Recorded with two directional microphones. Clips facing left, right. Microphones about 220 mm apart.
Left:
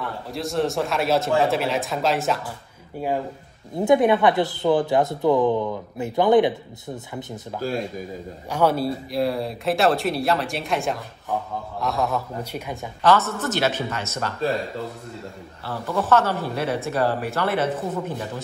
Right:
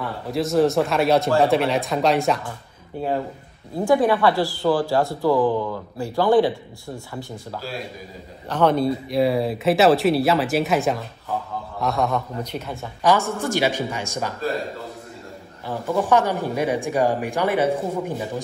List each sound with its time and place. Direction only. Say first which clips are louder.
0.0 s speech: right 4 dB; centre (ahead or behind)
3.7 s speech: left 1 dB; 20° left (ahead or behind)
8.5 s speech: right 2 dB; 10° left (ahead or behind)
13.0 s speech: even; 15° right (ahead or behind)
15.6 s speech: right 3 dB; 15° right (ahead or behind)